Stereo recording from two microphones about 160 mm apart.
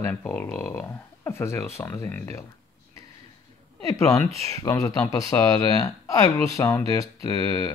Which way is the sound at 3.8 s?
20° left (ahead or behind).